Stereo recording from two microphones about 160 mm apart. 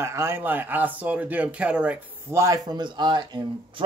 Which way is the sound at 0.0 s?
15° right (ahead or behind).